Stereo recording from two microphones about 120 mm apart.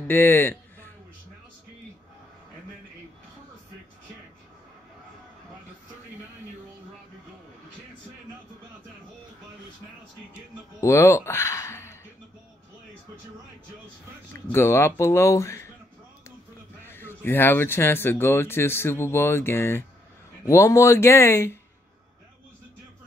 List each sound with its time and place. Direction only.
0.1 s a sound: 15° left (ahead or behind)
10.8 s music: 25° left (ahead or behind)
14.3 s speech: 20° left (ahead or behind)
16.8 s speech: 20° left (ahead or behind)